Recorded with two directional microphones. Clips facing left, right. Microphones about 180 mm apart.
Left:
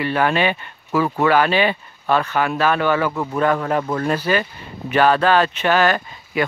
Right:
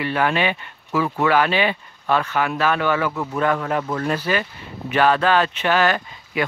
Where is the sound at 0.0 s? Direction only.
40° left (ahead or behind).